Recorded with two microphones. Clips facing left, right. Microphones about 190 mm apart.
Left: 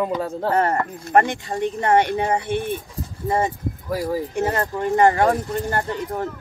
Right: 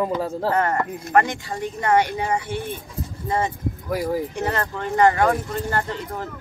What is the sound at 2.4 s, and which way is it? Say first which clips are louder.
Speech: left 4 dB; 20° left (ahead or behind).